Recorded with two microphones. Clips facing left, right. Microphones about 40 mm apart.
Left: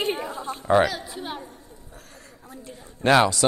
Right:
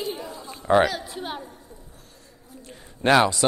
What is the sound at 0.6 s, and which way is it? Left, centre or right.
Chatter, centre.